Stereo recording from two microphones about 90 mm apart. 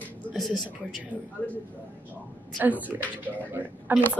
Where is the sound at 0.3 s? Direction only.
Centre (ahead or behind).